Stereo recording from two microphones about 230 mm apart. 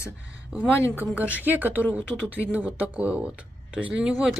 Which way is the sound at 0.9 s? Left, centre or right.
Centre.